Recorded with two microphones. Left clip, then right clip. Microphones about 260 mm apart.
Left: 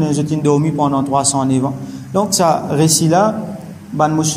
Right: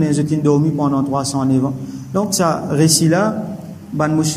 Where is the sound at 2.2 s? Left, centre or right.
Centre.